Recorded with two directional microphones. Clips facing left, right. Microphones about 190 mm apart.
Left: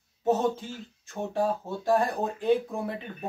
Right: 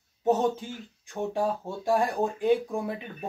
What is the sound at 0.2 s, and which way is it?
Speech, 15° right (ahead or behind).